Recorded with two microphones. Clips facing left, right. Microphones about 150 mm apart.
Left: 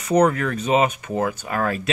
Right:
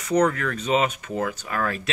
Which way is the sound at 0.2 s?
15° left (ahead or behind).